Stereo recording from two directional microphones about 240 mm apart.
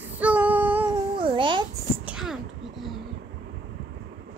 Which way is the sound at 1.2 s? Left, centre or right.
Centre.